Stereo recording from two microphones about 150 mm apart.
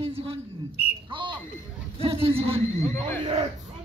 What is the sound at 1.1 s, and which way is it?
Smoke detector, 30° right (ahead or behind).